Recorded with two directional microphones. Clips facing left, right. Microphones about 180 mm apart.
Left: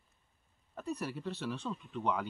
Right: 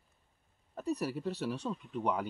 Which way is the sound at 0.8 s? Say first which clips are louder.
Right 4 dB; 40° right (ahead or behind).